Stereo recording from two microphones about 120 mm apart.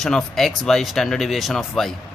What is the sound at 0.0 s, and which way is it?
Speech, 5° left (ahead or behind).